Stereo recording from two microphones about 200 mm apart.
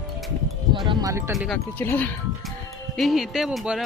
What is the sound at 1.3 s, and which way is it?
A man's voice, centre (ahead or behind).